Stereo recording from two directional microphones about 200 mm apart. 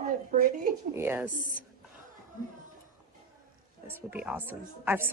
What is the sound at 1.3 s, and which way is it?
Speech, 40° right (ahead or behind).